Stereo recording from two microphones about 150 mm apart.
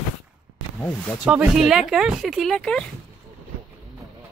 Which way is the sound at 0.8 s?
10° left (ahead or behind).